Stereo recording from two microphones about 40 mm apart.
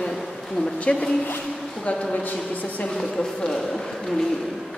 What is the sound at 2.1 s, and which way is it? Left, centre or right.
Speech, left.